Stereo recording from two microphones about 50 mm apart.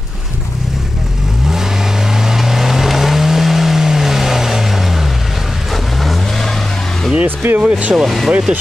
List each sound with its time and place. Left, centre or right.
2.2 s vehicle: centre
7.2 s speech: right
7.6 s speech: centre
7.9 s speech: centre
8.3 s speech: centre